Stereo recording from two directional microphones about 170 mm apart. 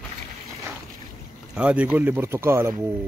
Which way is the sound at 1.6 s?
5° right (ahead or behind).